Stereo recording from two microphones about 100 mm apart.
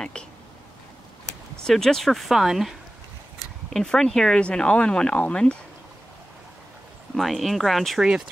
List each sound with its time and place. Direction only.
1.6 s speech: 5° left (ahead or behind)
3.7 s speech: 5° left (ahead or behind)
7.2 s speech: centre (ahead or behind)